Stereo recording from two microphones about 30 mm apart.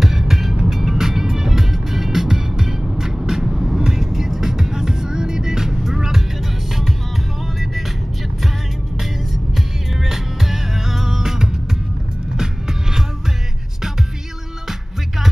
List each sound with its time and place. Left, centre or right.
0.0 s vehicle: centre
0.7 s music: centre
10.0 s music: centre